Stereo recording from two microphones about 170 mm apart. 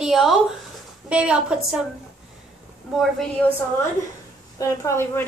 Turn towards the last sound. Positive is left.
turn(degrees=15)  # may be behind; listen again after turning